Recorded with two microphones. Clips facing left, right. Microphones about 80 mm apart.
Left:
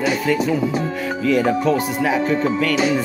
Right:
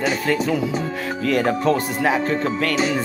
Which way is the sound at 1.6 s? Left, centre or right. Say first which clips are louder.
Left 1 dB; right.